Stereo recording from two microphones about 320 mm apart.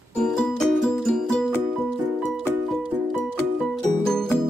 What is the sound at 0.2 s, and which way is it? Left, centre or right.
Music, centre.